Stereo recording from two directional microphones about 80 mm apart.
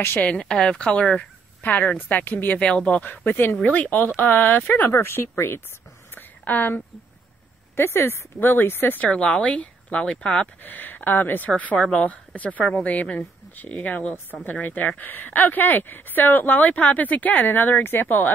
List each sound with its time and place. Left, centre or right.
0.2 s a woman's voice: centre; by 5.6 s left
6.1 s a sound: left
7.7 s a woman's voice: left; by 10.5 s centre
10.6 s a woman's voice: left